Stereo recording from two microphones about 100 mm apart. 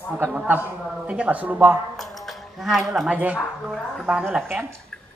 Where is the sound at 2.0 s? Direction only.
Centre (ahead or behind).